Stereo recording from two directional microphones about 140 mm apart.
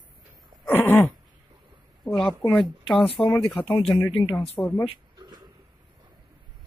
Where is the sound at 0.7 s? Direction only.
15° left (ahead or behind).